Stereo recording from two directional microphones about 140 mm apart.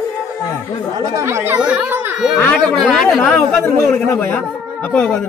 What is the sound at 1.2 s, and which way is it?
Speech, 20° right (ahead or behind).